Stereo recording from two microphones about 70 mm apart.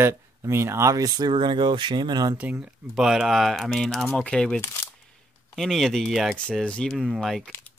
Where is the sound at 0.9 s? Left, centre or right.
Right.